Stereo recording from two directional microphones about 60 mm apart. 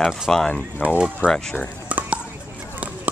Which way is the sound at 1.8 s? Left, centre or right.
Right.